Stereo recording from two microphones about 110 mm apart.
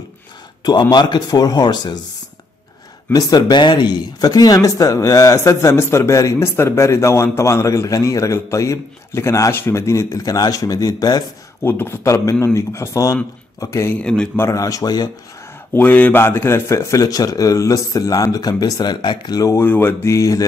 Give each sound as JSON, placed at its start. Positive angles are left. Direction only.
{"t": 0.7, "sound": "speech", "side_deg": 40}
{"t": 3.1, "sound": "speech", "side_deg": 35}
{"t": 11.6, "sound": "speech", "side_deg": 20}
{"t": 14.0, "sound": "a man's voice", "side_deg": 5}
{"t": 14.3, "sound": "speech", "side_deg": 25}
{"t": 15.7, "sound": "speech", "side_deg": 15}
{"t": 19.3, "sound": "speech", "side_deg": 30}
{"t": 19.6, "sound": "speech", "side_deg": 15}